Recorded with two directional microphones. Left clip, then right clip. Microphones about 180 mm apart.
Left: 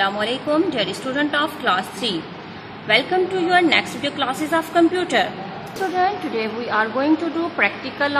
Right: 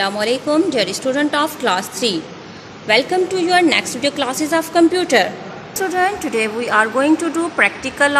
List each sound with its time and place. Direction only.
0.0 s a woman's voice: 40° right (ahead or behind)
5.9 s a woman's voice: 25° right (ahead or behind)